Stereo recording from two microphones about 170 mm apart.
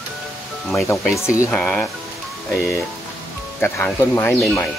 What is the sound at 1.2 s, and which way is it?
Speech, 15° left (ahead or behind).